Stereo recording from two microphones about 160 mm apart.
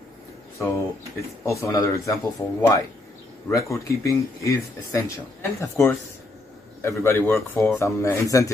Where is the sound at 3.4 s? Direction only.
20° left (ahead or behind).